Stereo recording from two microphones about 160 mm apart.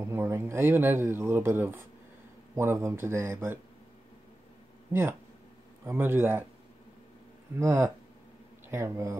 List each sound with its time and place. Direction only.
0.0 s speech: 15° right (ahead or behind)
5.9 s speech: 15° right (ahead or behind)
7.5 s speech: 15° right (ahead or behind)